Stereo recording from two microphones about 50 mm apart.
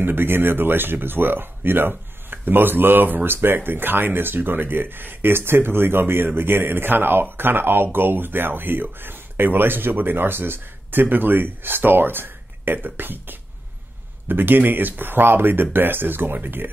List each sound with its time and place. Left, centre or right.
0.0 s speech: right